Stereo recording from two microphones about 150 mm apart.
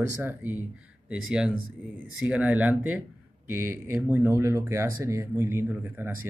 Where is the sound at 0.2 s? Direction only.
15° right (ahead or behind).